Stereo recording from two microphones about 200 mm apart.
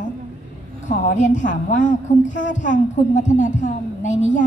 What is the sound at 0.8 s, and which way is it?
A woman's voice, 40° left (ahead or behind).